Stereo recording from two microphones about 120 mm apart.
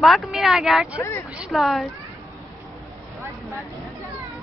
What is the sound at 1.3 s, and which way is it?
Speech, centre (ahead or behind).